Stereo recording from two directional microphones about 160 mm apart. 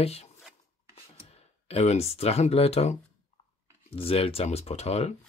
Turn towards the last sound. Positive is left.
turn(degrees=40)  # may be behind; listen again after turning